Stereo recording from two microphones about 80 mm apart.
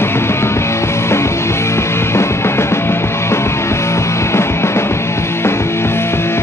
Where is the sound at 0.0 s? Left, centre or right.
Left.